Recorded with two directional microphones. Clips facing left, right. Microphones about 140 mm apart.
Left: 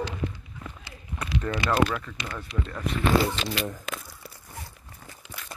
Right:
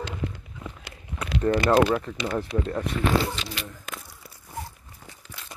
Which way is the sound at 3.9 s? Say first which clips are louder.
Left 3 dB; 90° left.